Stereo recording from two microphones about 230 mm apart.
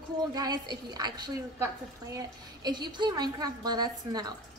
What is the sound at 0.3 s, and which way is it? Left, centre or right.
A woman's voice, centre.